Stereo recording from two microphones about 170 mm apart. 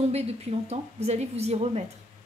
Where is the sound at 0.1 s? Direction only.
40° right (ahead or behind).